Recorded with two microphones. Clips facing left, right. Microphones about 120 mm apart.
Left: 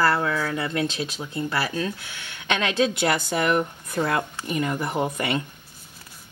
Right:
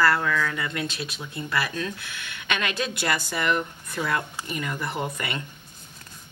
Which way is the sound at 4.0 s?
30° left (ahead or behind).